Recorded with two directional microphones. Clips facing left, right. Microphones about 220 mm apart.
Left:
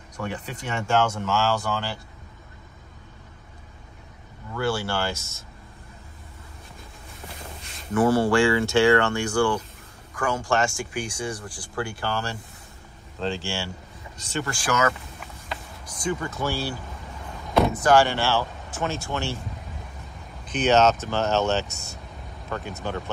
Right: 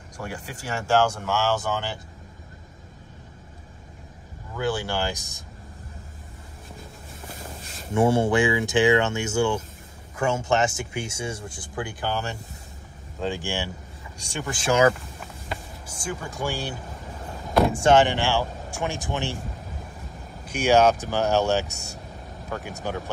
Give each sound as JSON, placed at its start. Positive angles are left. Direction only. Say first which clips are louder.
{"t": 0.7, "sound": "speech", "louder": "right 1 dB", "side_deg": -15}
{"t": 4.6, "sound": "speech", "louder": "even", "side_deg": -15}
{"t": 7.9, "sound": "speech", "louder": "even", "side_deg": -25}
{"t": 14.5, "sound": "speech", "louder": "right 5 dB", "side_deg": -25}
{"t": 15.4, "sound": "a sound", "louder": "right 2 dB", "side_deg": -5}
{"t": 17.7, "sound": "speech", "louder": "right 2 dB", "side_deg": -25}
{"t": 20.4, "sound": "speech", "louder": "right 1 dB", "side_deg": -10}